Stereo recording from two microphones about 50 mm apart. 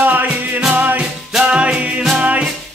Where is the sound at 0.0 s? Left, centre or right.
Right.